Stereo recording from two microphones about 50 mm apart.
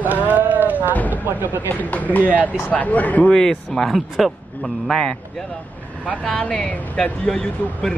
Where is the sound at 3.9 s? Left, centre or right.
Centre.